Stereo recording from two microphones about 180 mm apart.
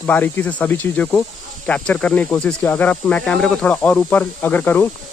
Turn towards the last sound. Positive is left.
turn(degrees=10)  # may be behind; listen again after turning